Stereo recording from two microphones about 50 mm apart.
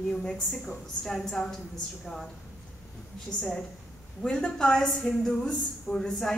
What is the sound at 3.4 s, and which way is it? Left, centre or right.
A woman's voice, centre.